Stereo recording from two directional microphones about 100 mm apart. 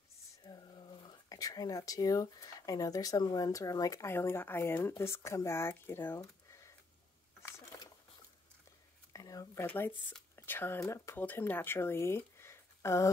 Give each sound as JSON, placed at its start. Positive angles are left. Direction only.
{"t": 0.4, "sound": "whispering", "side_deg": 45}
{"t": 1.3, "sound": "speech", "side_deg": 40}
{"t": 4.1, "sound": "speech", "side_deg": 25}
{"t": 6.1, "sound": "a sound", "side_deg": 30}
{"t": 9.1, "sound": "a sound", "side_deg": 35}
{"t": 9.7, "sound": "speech", "side_deg": 20}